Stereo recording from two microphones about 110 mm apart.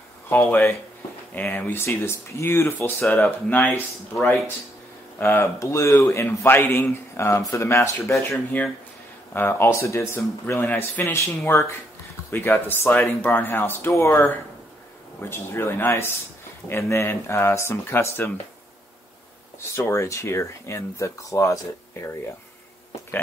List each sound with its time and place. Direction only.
0.3 s a man's voice: 15° left (ahead or behind)
19.7 s a man's voice: 25° left (ahead or behind)